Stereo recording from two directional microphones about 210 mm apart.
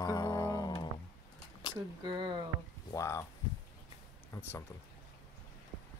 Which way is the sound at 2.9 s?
15° left (ahead or behind).